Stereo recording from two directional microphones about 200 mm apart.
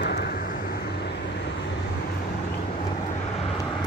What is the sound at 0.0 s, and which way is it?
Vehicle, 50° left (ahead or behind).